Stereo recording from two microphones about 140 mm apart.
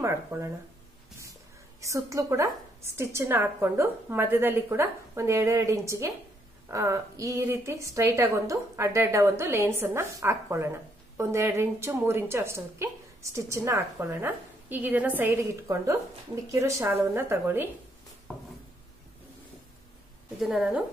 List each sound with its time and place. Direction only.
0.0 s a woman's voice: 20° right (ahead or behind)
1.8 s a woman's voice: 20° right (ahead or behind)
20.3 s a woman's voice: 5° right (ahead or behind)